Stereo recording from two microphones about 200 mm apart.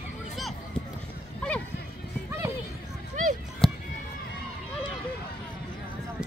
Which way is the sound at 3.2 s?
40° right (ahead or behind).